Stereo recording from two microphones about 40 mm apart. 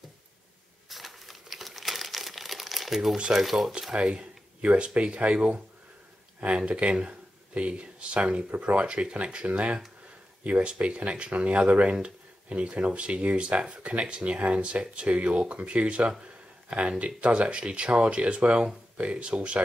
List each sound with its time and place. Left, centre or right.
0.8 s crumpling: centre
3.3 s speech: centre
3.9 s speech: right